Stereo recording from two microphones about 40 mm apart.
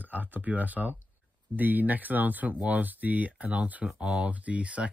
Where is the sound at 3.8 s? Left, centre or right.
Centre.